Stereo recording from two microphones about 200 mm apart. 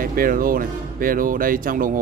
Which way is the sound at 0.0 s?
45° right (ahead or behind).